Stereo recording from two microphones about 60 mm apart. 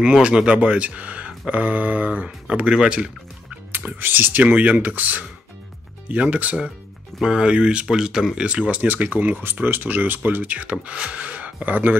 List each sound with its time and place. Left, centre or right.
0.0 s speech: centre
3.7 s speech: right; by 8.5 s centre
8.5 s speech: right